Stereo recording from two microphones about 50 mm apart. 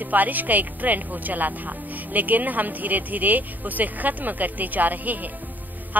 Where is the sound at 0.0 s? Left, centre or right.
Right.